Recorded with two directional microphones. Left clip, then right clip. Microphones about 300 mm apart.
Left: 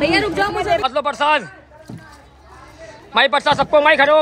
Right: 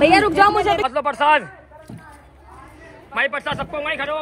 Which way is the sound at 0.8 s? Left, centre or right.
Centre.